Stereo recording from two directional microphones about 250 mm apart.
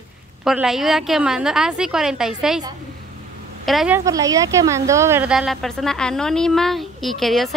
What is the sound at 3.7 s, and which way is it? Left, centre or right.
A woman's voice, centre.